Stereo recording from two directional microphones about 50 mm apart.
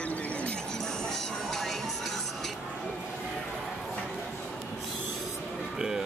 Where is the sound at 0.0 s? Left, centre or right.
Left.